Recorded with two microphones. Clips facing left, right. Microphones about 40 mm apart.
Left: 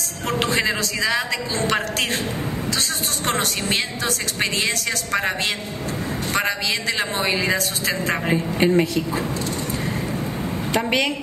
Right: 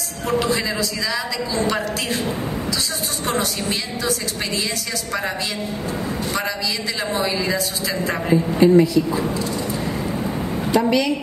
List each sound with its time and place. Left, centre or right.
0.3 s a woman's voice: left
3.3 s a woman's voice: left
7.0 s a woman's voice: left
10.7 s a woman's voice: left